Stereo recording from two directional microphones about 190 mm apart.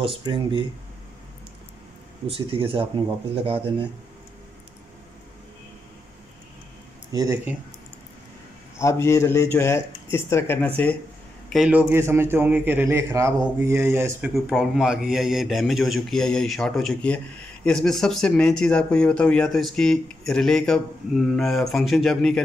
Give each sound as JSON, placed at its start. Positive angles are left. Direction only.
{"t": 0.0, "sound": "speech", "side_deg": -25}
{"t": 2.2, "sound": "speech", "side_deg": -30}
{"t": 7.1, "sound": "speech", "side_deg": -20}
{"t": 8.7, "sound": "speech", "side_deg": 15}
{"t": 11.4, "sound": "a man's voice", "side_deg": 0}
{"t": 14.3, "sound": "a man's voice", "side_deg": 0}